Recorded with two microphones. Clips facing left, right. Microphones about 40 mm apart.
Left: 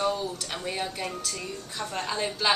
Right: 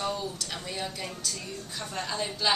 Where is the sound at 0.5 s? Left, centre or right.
Left.